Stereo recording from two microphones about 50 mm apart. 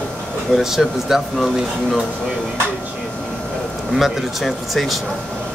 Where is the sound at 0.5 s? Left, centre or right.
Centre.